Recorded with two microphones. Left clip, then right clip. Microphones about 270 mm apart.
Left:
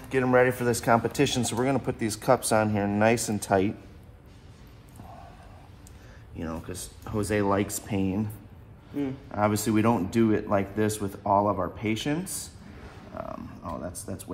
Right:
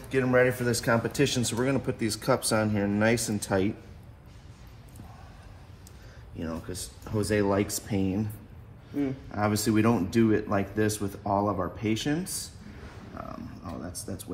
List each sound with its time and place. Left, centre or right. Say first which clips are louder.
0.1 s speech: left 2 dB; left
6.4 s speech: even; centre
9.3 s speech: left 3 dB; centre
13.2 s speech: left 4 dB; left